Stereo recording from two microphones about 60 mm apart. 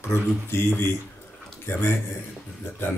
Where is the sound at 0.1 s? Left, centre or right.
Left.